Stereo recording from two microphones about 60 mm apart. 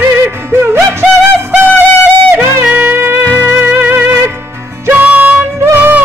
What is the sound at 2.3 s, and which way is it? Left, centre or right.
Music, right.